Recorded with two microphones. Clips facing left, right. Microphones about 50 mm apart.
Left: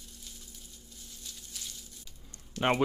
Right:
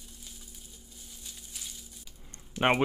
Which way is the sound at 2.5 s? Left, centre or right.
Right.